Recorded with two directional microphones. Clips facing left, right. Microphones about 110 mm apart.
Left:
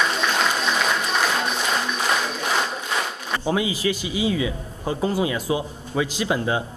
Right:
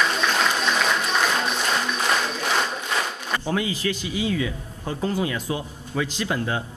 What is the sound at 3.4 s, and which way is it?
A man's voice, 15° left (ahead or behind).